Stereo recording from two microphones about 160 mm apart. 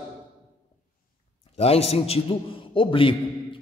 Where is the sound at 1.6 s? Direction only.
40° left (ahead or behind).